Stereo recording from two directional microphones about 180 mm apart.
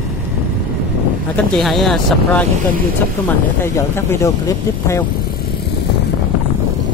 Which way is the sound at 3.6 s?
15° left (ahead or behind).